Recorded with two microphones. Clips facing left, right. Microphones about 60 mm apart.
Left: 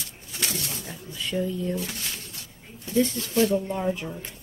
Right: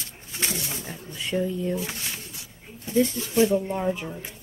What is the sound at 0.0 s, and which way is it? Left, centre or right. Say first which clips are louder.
Speech: right 1 dB; right.